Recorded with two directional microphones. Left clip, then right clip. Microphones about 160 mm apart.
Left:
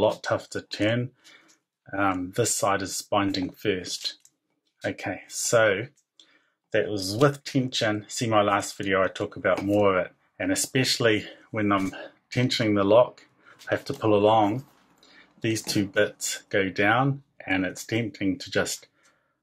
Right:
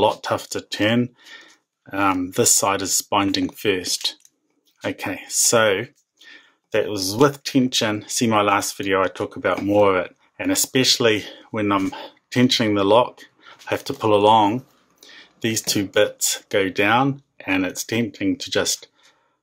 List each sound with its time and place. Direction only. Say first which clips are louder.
0.0 s speech: right 4 dB; 35° right (ahead or behind)